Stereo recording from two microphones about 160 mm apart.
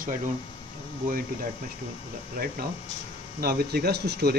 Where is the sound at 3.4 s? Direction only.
75° right (ahead or behind); by 4.3 s 90° right.